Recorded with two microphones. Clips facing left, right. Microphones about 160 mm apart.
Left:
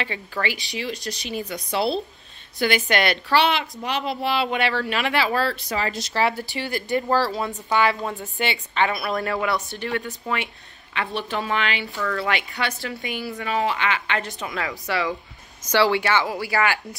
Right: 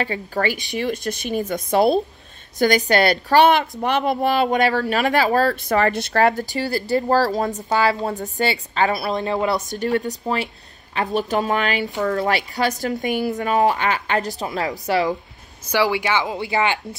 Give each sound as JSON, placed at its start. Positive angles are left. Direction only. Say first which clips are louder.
{"t": 0.0, "sound": "speech", "louder": "right 5 dB", "side_deg": -40}
{"t": 15.7, "sound": "speech", "louder": "even", "side_deg": -10}